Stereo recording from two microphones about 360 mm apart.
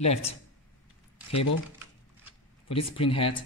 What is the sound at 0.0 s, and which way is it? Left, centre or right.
Speech, centre.